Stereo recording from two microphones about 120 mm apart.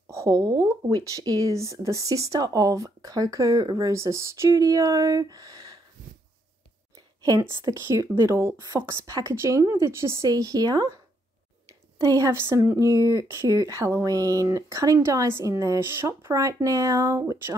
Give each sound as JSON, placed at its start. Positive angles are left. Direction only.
{"t": 0.1, "sound": "speech", "side_deg": -30}
{"t": 7.2, "sound": "speech", "side_deg": -30}
{"t": 12.0, "sound": "speech", "side_deg": -25}